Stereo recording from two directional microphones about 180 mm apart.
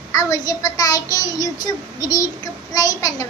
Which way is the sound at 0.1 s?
20° left (ahead or behind).